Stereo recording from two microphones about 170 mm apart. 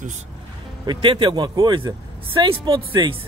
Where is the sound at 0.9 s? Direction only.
30° right (ahead or behind).